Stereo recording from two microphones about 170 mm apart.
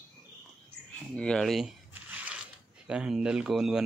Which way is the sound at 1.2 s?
5° left (ahead or behind).